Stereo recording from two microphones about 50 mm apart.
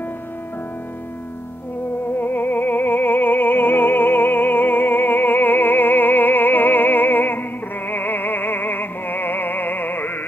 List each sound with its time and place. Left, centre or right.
2.1 s music: left